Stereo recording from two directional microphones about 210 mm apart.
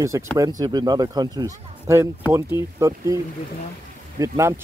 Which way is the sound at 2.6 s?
15° right (ahead or behind).